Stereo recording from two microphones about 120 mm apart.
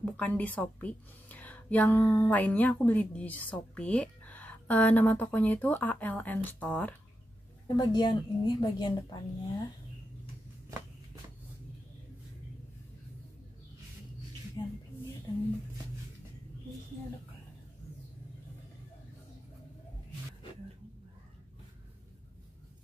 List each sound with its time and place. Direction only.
0.0 s a woman's voice: 10° left (ahead or behind)
7.6 s a woman's voice: 35° left (ahead or behind)
14.6 s speech: 35° left (ahead or behind)